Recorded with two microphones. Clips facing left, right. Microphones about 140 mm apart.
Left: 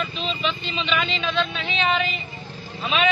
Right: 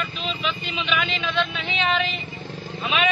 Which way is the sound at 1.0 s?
20° left (ahead or behind).